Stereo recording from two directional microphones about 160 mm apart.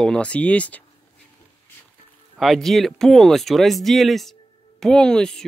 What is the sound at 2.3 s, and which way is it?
Speech, centre (ahead or behind).